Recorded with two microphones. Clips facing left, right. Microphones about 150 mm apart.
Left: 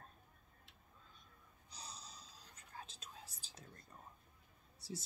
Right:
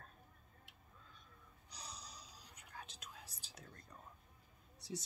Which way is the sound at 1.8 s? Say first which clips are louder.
Right 1 dB; 25° left (ahead or behind).